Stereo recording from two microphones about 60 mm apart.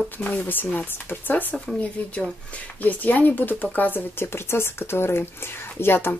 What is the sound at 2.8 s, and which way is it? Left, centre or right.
Speech, left.